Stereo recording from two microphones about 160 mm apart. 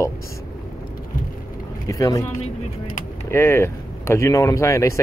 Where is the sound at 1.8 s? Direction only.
20° left (ahead or behind).